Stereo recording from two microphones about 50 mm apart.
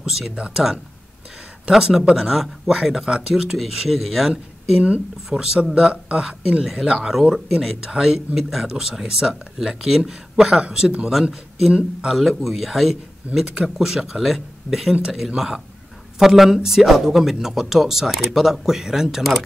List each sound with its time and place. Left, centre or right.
0.0 s speech: centre
1.7 s speech: centre
4.6 s speech: right
6.6 s speech: centre
12.2 s speech: centre